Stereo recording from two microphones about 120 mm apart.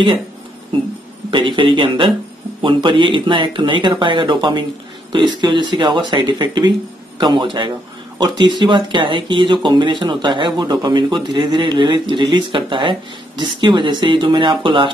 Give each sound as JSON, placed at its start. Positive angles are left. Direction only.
{"t": 1.3, "sound": "speech", "side_deg": -40}